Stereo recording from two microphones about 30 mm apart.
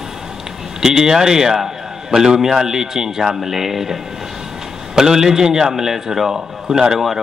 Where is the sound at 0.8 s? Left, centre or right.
Centre.